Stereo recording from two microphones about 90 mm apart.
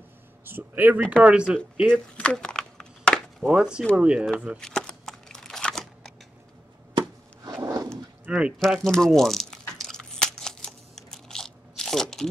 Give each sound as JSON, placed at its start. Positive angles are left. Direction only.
{"t": 0.5, "sound": "speech", "side_deg": -20}
{"t": 1.1, "sound": "speech", "side_deg": -10}
{"t": 1.9, "sound": "a sound", "side_deg": 10}
{"t": 3.4, "sound": "speech", "side_deg": -10}
{"t": 4.6, "sound": "typing", "side_deg": 5}
{"t": 7.6, "sound": "a sound", "side_deg": -40}
{"t": 8.3, "sound": "speech", "side_deg": -10}
{"t": 8.5, "sound": "crumpling", "side_deg": 0}